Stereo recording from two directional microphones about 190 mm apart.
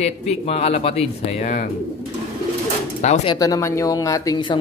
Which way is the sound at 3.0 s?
35° left (ahead or behind).